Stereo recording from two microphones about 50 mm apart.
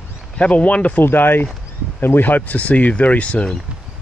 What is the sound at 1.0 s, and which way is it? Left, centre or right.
Speech, left.